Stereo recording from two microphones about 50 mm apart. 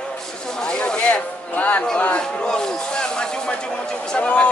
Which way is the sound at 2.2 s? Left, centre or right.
Centre.